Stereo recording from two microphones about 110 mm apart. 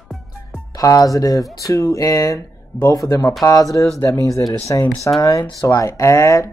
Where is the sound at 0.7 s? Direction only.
35° left (ahead or behind).